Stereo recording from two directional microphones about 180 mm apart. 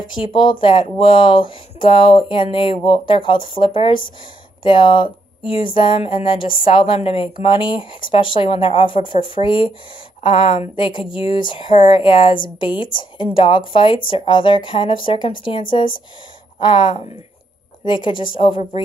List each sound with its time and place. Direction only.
0.1 s speech: 30° left (ahead or behind)
16.6 s speech: 25° left (ahead or behind)
18.1 s speech: 50° left (ahead or behind)